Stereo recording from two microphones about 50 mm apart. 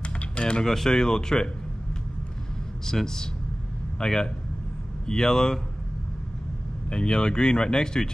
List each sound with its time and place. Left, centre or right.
0.0 s typing: left
0.7 s speech: centre
2.9 s speech: centre
6.9 s speech: centre